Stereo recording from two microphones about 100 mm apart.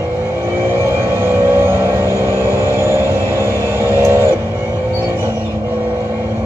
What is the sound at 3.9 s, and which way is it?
Vehicle, 25° right (ahead or behind).